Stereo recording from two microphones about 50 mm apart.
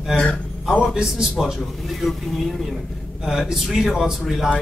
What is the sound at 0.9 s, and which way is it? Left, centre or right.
Speech, centre.